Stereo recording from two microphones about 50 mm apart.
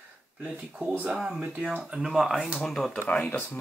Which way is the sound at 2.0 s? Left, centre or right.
Centre.